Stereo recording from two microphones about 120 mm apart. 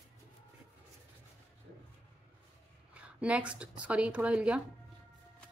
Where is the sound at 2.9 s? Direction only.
10° right (ahead or behind).